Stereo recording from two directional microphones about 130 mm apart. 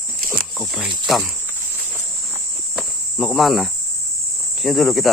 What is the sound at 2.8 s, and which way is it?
Cricket, centre (ahead or behind).